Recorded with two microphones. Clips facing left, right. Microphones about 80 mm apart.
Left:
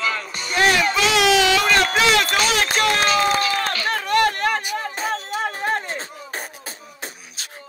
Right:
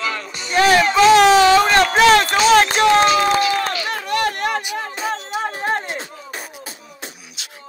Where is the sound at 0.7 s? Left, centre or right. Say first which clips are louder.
Right 7 dB; right.